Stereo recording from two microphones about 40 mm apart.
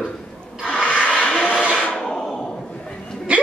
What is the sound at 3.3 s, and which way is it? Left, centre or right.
Hiccup, right.